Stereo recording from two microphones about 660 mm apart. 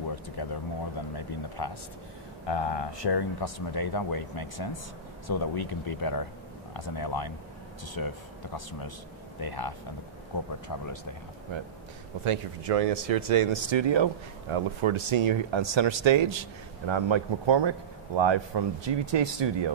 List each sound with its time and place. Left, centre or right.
0.1 s speech: left
9.4 s speech: left
11.5 s speech: right
12.3 s speech: right